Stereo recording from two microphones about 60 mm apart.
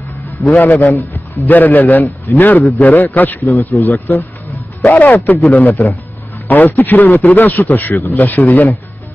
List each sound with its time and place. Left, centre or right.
0.5 s a man's voice: left